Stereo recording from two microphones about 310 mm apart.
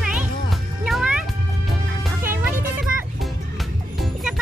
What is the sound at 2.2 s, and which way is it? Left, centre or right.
Music, right.